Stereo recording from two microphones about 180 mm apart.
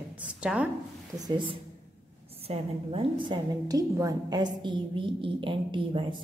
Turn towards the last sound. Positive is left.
turn(degrees=-30)  # may be behind; listen again after turning